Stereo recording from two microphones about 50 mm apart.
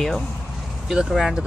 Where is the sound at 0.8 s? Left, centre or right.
Centre.